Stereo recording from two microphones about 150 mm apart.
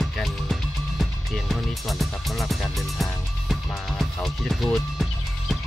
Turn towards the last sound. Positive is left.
turn(degrees=0)  # may be behind; listen again after turning